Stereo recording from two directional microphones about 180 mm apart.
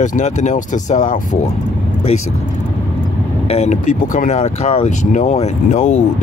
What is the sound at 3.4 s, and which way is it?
Speech, 40° left (ahead or behind).